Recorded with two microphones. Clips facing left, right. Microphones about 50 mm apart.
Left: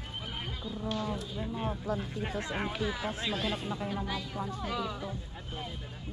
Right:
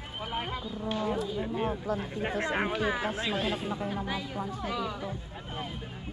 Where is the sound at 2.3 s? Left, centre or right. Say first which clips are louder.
Right 6 dB; right.